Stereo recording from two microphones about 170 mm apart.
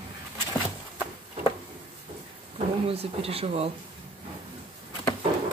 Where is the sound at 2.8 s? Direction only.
35° right (ahead or behind).